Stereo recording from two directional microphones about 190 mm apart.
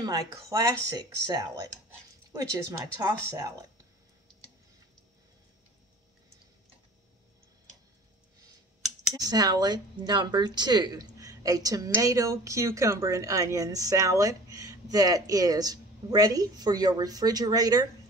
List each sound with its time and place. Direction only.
0.0 s speech: 20° right (ahead or behind)
9.1 s speech: 20° right (ahead or behind)